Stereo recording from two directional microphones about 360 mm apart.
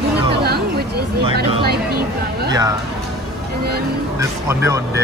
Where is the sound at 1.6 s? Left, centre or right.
Right.